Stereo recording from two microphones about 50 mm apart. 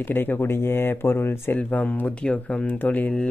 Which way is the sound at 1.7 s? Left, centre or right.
Left.